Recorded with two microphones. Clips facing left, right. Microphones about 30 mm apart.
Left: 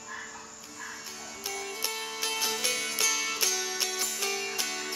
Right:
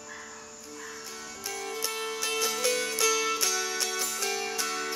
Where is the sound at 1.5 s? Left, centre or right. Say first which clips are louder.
Right 1 dB; centre.